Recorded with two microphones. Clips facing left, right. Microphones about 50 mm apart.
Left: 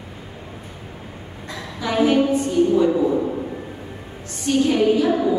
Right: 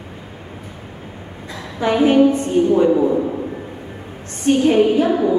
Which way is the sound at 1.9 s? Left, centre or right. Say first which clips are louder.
Right 4 dB; right.